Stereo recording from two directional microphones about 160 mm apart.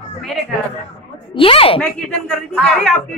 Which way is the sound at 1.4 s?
35° left (ahead or behind).